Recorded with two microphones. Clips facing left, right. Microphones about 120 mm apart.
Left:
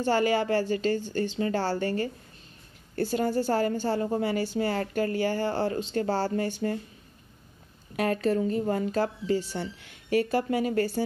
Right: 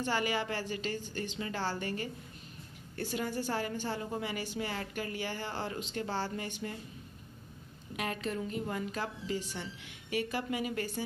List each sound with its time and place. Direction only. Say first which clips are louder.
0.0 s a woman's voice: left 8 dB; 35° left (ahead or behind)
3.0 s a woman's voice: left 9 dB; 30° left (ahead or behind)
7.9 s a woman's voice: left 10 dB; 40° left (ahead or behind)